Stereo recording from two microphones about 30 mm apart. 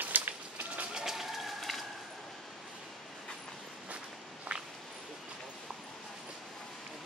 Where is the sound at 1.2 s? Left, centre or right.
Centre.